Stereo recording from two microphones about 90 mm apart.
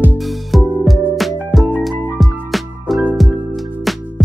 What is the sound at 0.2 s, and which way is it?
Music, centre (ahead or behind).